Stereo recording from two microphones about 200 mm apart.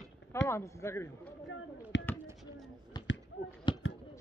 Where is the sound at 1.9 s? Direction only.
60° left (ahead or behind).